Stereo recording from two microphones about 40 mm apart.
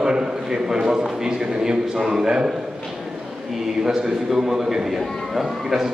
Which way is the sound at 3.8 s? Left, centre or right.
Centre.